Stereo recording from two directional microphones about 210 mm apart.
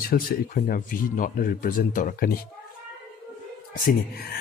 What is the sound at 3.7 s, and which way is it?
Speech, 45° left (ahead or behind).